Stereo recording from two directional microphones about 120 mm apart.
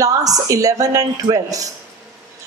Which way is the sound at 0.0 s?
30° right (ahead or behind).